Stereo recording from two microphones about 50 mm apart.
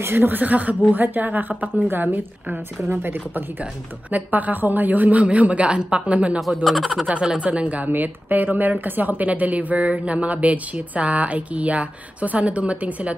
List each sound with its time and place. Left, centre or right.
0.0 s a woman's voice: right
4.1 s speech: right
6.4 s speech: centre
7.2 s speech: right